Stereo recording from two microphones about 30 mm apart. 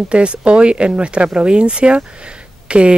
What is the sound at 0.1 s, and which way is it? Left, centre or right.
Speech, right.